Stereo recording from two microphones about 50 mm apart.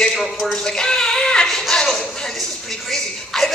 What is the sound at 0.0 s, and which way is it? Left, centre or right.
A man's voice, centre.